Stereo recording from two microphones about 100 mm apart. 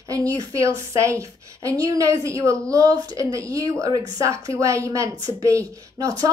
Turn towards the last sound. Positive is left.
turn(degrees=-35)  # may be behind; listen again after turning